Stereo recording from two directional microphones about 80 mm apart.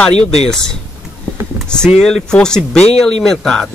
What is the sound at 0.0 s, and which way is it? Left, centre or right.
Speech, centre.